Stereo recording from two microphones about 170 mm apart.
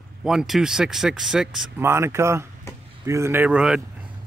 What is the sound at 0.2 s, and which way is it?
Speech, 5° right (ahead or behind).